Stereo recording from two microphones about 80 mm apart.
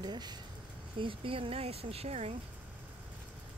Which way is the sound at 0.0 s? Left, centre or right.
Right.